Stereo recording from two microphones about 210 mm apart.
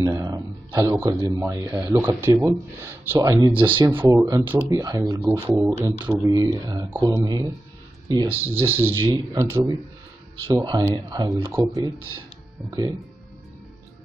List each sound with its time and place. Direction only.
0.0 s speech: 15° right (ahead or behind)
3.9 s speech: 10° right (ahead or behind)
5.6 s speech: 5° right (ahead or behind)